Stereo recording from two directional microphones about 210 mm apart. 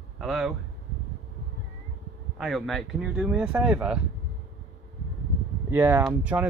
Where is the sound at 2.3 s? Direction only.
Centre (ahead or behind).